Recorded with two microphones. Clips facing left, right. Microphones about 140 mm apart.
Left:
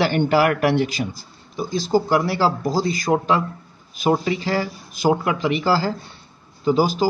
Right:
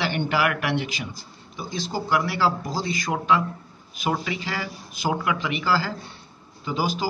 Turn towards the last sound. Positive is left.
turn(degrees=40)  # may be behind; listen again after turning